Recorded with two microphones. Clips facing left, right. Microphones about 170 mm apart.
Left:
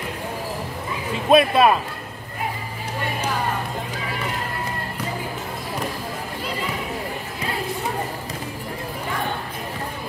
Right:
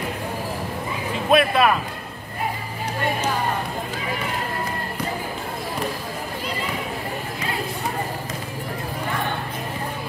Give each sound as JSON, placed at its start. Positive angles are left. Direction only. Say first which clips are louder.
{"t": 1.3, "sound": "speech", "louder": "left 3 dB", "side_deg": 25}